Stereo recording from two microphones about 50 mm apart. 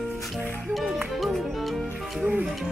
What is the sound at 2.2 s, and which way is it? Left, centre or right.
Music, right.